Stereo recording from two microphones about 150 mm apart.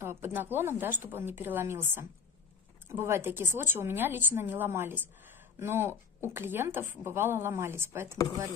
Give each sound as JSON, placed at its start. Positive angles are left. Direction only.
{"t": 0.0, "sound": "a woman's voice", "side_deg": -15}